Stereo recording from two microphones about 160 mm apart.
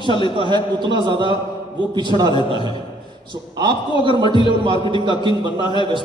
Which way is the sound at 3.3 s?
30° right (ahead or behind).